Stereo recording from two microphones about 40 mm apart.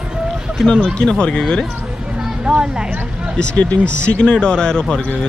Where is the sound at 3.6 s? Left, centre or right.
Left.